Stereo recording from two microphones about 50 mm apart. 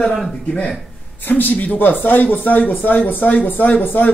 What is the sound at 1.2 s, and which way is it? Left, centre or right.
Speech, left.